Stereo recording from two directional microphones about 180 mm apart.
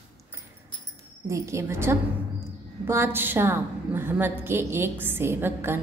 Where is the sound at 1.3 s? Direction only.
15° right (ahead or behind).